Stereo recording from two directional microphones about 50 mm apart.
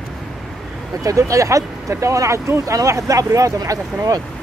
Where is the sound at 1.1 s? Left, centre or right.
Right.